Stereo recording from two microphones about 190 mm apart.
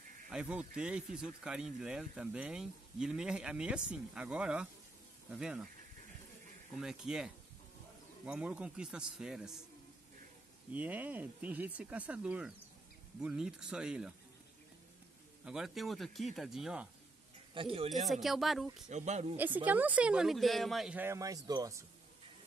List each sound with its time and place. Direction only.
0.3 s speech: 5° right (ahead or behind)
6.8 s speech: 5° right (ahead or behind)
8.3 s speech: 5° right (ahead or behind)
10.7 s speech: 10° right (ahead or behind)
15.4 s speech: centre (ahead or behind)
17.6 s speech: 30° right (ahead or behind)
18.0 s speech: centre (ahead or behind)
18.9 s speech: 40° right (ahead or behind)
19.3 s speech: 10° right (ahead or behind)